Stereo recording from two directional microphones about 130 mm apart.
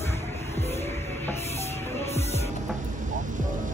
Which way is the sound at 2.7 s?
80° right.